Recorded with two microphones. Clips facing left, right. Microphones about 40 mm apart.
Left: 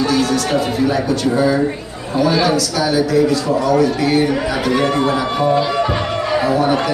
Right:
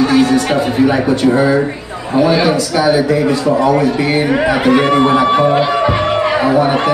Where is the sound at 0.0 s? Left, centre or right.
Right.